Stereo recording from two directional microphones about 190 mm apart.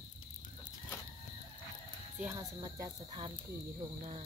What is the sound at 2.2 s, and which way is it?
Speech, 15° right (ahead or behind).